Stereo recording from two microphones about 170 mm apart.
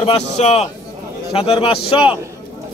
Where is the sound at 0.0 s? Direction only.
35° left (ahead or behind).